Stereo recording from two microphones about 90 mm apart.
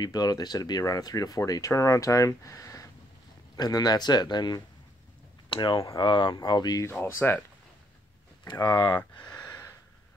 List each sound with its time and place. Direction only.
0.0 s speech: 45° left (ahead or behind)
5.5 s speech: 70° left (ahead or behind); by 6.9 s 45° left (ahead or behind)
6.9 s speech: 20° left (ahead or behind)
8.5 s speech: 50° left (ahead or behind)